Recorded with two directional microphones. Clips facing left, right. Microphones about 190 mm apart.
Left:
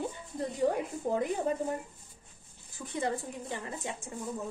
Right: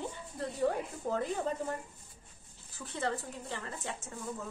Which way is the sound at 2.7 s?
15° left (ahead or behind).